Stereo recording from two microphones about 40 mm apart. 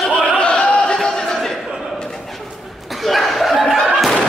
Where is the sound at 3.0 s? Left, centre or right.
Centre.